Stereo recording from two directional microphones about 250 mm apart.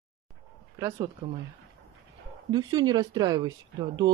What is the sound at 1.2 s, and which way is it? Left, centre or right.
Speech, right.